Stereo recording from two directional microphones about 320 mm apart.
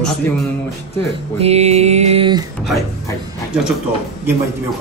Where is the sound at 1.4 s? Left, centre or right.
Centre.